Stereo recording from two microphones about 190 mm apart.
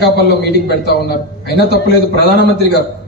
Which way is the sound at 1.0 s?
55° left (ahead or behind).